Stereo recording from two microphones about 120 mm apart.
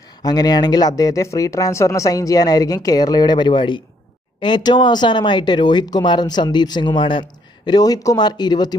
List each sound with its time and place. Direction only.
0.2 s speech: 35° left (ahead or behind)